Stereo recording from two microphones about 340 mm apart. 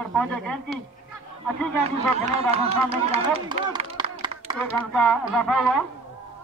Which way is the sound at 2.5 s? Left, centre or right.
Centre.